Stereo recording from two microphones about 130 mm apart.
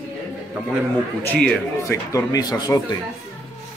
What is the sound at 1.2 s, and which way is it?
Speech, 10° left (ahead or behind).